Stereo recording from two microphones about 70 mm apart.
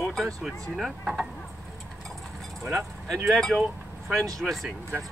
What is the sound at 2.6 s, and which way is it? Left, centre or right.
Speech, centre.